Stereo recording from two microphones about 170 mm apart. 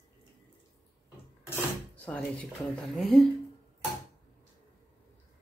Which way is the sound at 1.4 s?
10° left (ahead or behind).